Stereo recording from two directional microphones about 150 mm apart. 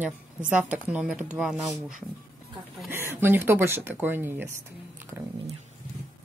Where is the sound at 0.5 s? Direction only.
10° right (ahead or behind).